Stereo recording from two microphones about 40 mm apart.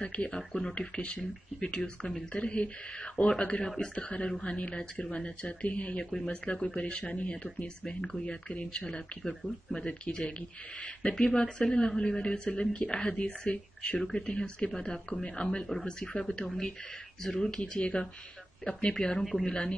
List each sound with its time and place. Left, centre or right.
0.0 s speech: left
3.6 s speech: centre
3.9 s speech: left
6.0 s speech: left
8.8 s speech: centre
11.0 s speech: centre
16.2 s speech: centre